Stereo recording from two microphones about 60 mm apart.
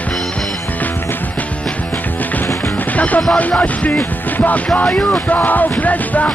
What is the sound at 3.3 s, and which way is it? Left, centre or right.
Music, left.